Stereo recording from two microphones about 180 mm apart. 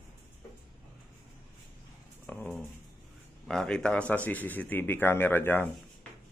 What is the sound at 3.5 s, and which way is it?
Speech, 5° left (ahead or behind).